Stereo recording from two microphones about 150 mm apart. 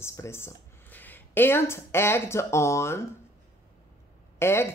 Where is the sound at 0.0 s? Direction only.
20° left (ahead or behind).